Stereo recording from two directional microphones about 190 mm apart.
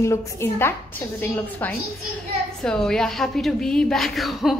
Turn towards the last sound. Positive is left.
turn(degrees=0)  # may be behind; listen again after turning